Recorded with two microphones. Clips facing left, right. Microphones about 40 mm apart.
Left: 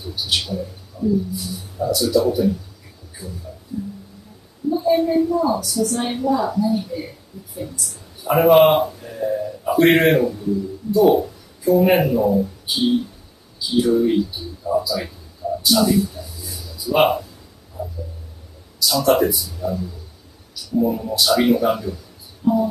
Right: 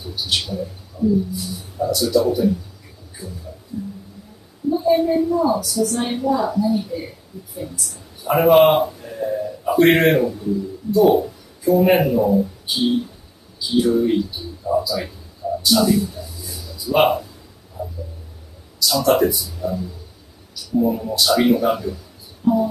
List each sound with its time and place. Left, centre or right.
0.0 s a woman's voice: centre
17.8 s a sound: centre
18.8 s speech: centre